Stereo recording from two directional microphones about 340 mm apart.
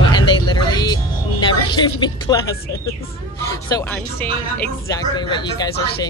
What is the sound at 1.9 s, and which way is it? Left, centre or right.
Speech, centre.